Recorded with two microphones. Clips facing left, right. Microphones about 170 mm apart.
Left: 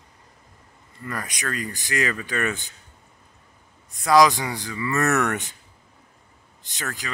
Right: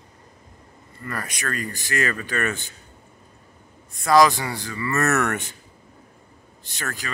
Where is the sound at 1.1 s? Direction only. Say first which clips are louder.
Right 1 dB; 15° left (ahead or behind).